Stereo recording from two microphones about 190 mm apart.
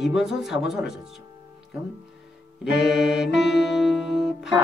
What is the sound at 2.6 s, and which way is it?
Music, 5° right (ahead or behind).